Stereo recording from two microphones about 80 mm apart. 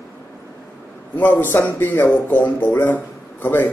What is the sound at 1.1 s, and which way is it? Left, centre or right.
Speech, left.